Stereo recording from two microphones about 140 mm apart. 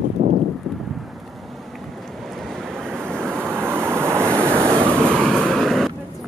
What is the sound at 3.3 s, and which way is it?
Waves, 15° right (ahead or behind).